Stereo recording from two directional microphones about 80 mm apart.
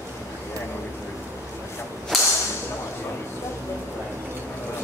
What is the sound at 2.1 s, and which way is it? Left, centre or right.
Whip, centre.